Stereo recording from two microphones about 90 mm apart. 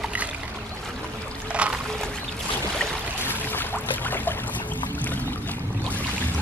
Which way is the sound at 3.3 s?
20° left (ahead or behind).